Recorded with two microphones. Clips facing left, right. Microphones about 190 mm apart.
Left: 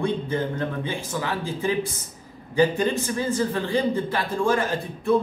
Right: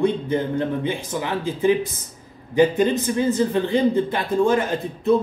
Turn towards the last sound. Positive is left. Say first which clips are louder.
# right 3 dB
turn(degrees=-20)  # may be behind; listen again after turning